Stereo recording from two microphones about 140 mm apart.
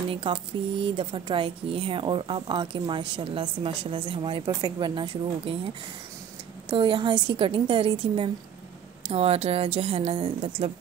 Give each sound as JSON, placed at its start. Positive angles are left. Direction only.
{"t": 0.1, "sound": "speech", "side_deg": -40}
{"t": 6.7, "sound": "a woman's voice", "side_deg": -35}